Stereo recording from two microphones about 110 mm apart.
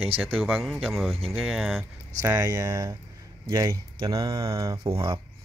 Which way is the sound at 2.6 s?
40° right (ahead or behind).